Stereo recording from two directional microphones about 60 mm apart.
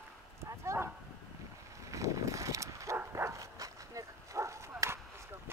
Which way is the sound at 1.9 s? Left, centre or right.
Right.